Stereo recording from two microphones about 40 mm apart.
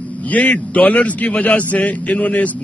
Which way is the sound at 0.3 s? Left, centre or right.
Left.